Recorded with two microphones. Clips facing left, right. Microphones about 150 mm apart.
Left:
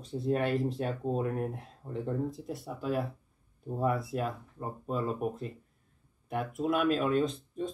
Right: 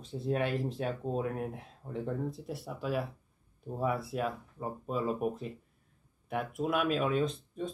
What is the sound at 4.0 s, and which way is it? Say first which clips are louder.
Speech: left 1 dB; 50° left (ahead or behind).